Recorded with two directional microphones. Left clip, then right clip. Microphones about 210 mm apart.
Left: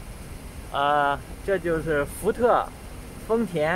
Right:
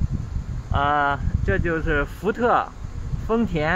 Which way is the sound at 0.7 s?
25° right (ahead or behind).